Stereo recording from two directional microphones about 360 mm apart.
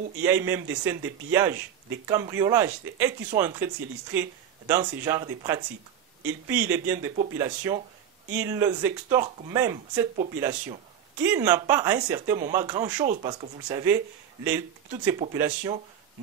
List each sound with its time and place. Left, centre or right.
0.2 s a man's voice: centre
13.0 s speech: right
13.3 s speech: centre